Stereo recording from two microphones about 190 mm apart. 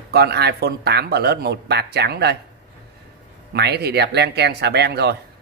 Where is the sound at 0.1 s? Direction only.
55° right (ahead or behind).